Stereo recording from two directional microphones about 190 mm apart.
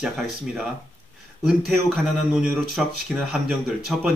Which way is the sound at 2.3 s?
5° right (ahead or behind).